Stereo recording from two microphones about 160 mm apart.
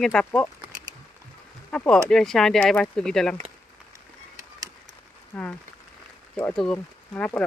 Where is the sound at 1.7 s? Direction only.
5° left (ahead or behind).